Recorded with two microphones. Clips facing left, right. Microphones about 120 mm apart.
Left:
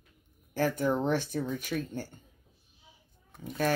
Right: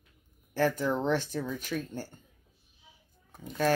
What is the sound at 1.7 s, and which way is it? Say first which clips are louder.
Speech: even; 40° left (ahead or behind).